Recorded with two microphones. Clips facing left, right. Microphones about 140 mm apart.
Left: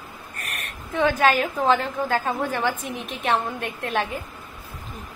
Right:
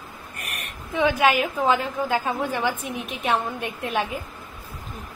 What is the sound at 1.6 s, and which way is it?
A woman's voice, 5° right (ahead or behind).